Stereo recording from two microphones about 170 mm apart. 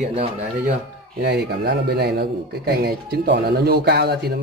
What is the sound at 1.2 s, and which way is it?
Speech, 80° right.